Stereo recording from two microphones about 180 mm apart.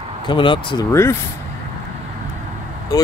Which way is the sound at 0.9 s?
15° left (ahead or behind).